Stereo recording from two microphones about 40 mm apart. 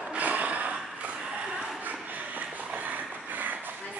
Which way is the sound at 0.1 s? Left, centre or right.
Right.